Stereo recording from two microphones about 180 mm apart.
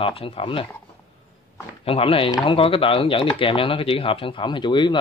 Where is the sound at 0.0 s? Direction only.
30° left (ahead or behind).